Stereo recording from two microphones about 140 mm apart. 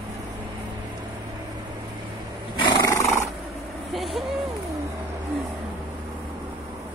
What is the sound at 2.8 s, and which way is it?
Roar, 20° left (ahead or behind).